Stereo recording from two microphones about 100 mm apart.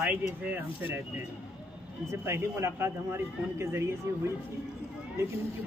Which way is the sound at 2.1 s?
25° right (ahead or behind).